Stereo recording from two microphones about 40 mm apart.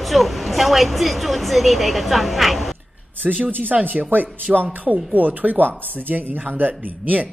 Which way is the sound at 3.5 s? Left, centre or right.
Right.